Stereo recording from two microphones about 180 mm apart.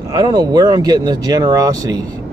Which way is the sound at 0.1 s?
20° right (ahead or behind).